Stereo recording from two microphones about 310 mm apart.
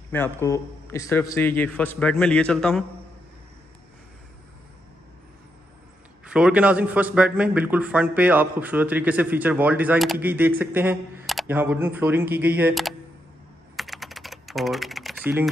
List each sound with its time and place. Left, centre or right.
0.1 s a man's voice: centre
6.2 s a man's voice: centre
13.7 s typing: centre